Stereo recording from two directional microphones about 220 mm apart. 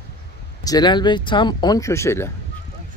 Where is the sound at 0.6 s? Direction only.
20° left (ahead or behind).